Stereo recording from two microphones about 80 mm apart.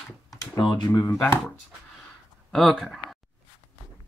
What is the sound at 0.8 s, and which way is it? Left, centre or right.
Speech, left.